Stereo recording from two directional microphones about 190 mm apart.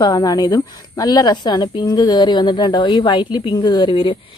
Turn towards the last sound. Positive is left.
turn(degrees=25)  # may be behind; listen again after turning